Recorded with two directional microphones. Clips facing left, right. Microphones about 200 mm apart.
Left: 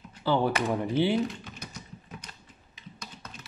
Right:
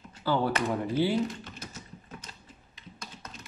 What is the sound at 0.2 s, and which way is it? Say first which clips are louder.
Speech: left 2 dB; 20° left (ahead or behind).